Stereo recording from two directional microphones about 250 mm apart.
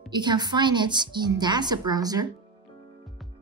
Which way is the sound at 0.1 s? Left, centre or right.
Centre.